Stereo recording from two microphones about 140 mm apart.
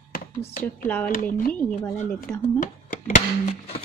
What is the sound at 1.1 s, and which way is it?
Speech, 90° left.